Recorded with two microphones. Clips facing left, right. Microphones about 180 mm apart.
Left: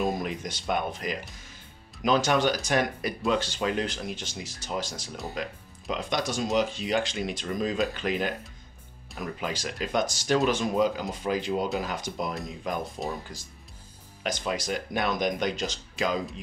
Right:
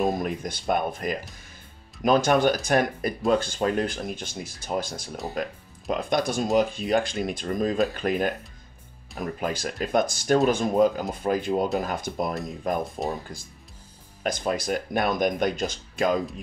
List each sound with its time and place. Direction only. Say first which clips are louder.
0.2 s speech: right 3 dB; 55° right (ahead or behind)
9.4 s speech: right 4 dB; 50° right (ahead or behind)
14.2 s speech: right 4 dB; 50° right (ahead or behind)